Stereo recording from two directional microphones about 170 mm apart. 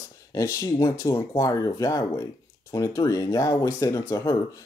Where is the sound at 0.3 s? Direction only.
20° left (ahead or behind).